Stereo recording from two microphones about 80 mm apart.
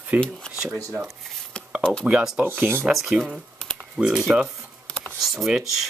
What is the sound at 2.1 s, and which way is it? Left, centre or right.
Cutlery, centre.